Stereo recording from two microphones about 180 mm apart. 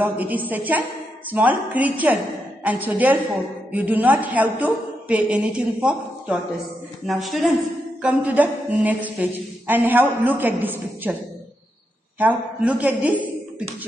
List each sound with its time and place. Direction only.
0.0 s a woman's voice: 10° right (ahead or behind)
12.2 s a woman's voice: 10° right (ahead or behind)